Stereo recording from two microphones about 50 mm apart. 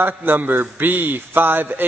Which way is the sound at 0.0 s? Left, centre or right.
Right.